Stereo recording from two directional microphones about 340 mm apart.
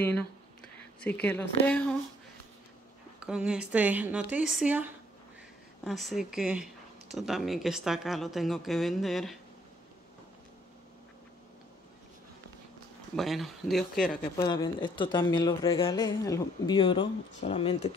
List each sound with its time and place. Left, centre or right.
0.0 s speech: centre
3.2 s speech: centre
13.1 s speech: centre
14.4 s speech: centre